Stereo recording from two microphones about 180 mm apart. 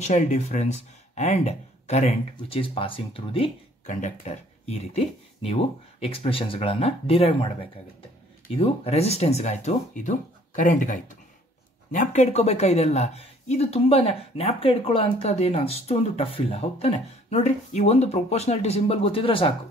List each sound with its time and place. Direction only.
0.0 s speech: 40° left (ahead or behind)
8.5 s speech: 35° left (ahead or behind)